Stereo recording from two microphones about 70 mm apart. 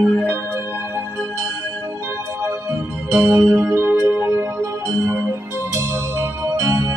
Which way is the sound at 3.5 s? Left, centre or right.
Right.